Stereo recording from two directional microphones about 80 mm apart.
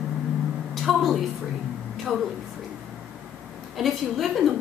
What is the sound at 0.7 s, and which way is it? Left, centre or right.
A woman's voice, centre.